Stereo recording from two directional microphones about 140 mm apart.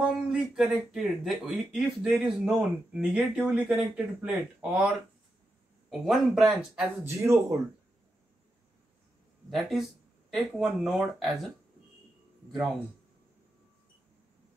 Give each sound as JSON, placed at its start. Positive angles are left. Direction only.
{"t": 0.3, "sound": "speech", "side_deg": -5}
{"t": 7.1, "sound": "speech", "side_deg": -20}
{"t": 9.5, "sound": "speech", "side_deg": 0}